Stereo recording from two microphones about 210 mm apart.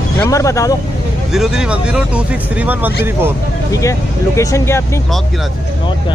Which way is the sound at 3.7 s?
15° left (ahead or behind).